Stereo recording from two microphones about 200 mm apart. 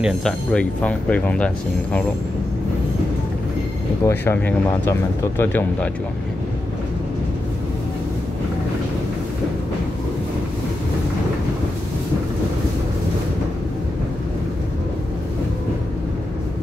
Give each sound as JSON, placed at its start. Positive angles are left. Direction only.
{"t": 0.0, "sound": "speech", "side_deg": 5}
{"t": 4.0, "sound": "speech", "side_deg": 10}